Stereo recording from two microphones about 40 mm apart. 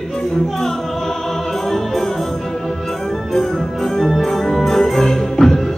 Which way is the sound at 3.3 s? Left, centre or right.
Centre.